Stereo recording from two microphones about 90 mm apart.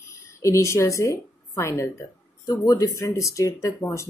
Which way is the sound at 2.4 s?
45° left (ahead or behind).